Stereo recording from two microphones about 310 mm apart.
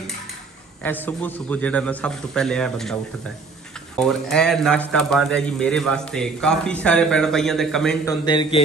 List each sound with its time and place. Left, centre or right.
0.8 s speech: centre
4.0 s speech: centre
8.3 s a man's voice: centre